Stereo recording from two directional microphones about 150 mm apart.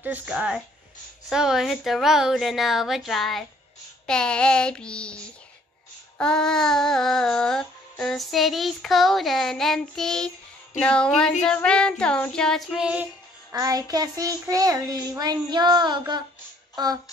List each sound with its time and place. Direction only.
0.0 s speech: 10° right (ahead or behind)
1.3 s music: 5° right (ahead or behind)
4.0 s child singing: 5° left (ahead or behind)
6.1 s music: 5° left (ahead or behind)
13.5 s child singing: 20° right (ahead or behind)
16.7 s music: 25° right (ahead or behind)